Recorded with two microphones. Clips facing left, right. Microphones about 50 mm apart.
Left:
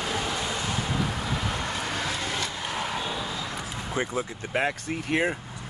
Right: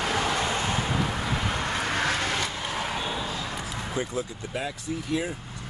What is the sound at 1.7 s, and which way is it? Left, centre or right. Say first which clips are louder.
Vehicle: right 3 dB; right.